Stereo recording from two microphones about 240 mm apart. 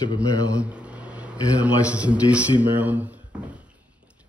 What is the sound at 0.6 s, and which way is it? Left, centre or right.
A man's voice, centre.